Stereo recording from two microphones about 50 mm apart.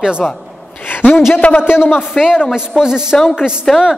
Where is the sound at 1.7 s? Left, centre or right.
Left.